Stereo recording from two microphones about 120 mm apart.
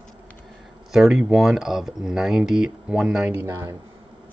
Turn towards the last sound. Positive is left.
turn(degrees=-20)  # may be behind; listen again after turning